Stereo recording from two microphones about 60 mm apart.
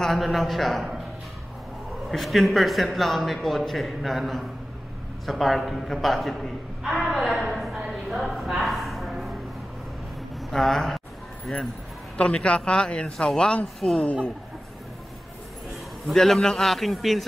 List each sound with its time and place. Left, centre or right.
0.0 s a man's voice: centre
2.0 s a man's voice: centre
7.0 s a sound: centre
10.3 s speech: centre
11.5 s a man's voice: centre
13.7 s a man's voice: centre
15.7 s a man's voice: centre